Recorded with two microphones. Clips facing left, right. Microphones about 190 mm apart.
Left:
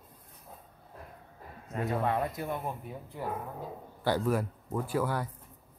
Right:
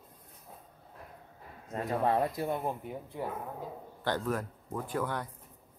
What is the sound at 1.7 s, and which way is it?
Speech, 30° right (ahead or behind).